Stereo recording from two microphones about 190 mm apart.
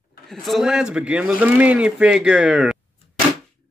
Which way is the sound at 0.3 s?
Centre (ahead or behind).